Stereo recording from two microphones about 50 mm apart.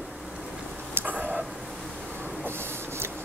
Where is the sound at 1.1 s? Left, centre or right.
Right.